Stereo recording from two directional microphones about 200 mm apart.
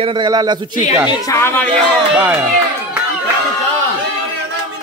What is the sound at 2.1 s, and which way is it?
Speech, 10° right (ahead or behind).